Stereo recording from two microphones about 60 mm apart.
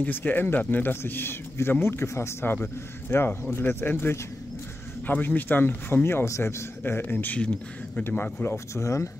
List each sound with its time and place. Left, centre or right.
0.0 s a man's voice: left
7.3 s speech: centre
8.2 s speech: left